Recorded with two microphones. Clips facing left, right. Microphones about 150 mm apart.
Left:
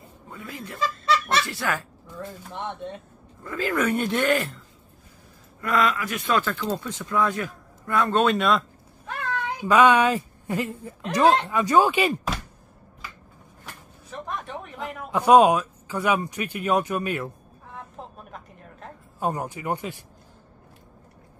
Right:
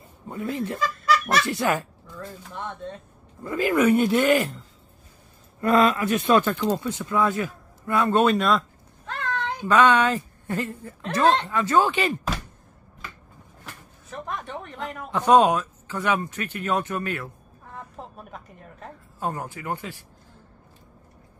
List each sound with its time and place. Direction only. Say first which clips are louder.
0.3 s speech: right 10 dB; 25° right (ahead or behind)
0.7 s goose: left 2 dB; 25° left (ahead or behind)
1.5 s speech: right 5 dB; 20° right (ahead or behind)
2.1 s speech: left 1 dB; 20° left (ahead or behind)
3.4 s speech: right 5 dB; 15° right (ahead or behind)
5.6 s speech: right 4 dB; 30° right (ahead or behind); by 8.6 s centre (ahead or behind)
9.0 s a child's voice: right 1 dB; 10° left (ahead or behind)
14.1 s speech: even; centre (ahead or behind)
17.7 s a sound: right 1 dB; centre (ahead or behind)
19.1 s speech: left 3 dB; 15° left (ahead or behind)